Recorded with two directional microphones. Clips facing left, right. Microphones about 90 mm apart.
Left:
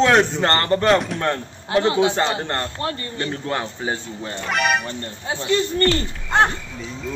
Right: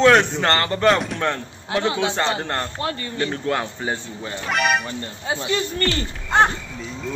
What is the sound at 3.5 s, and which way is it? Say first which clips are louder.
Speech: even; centre (ahead or behind).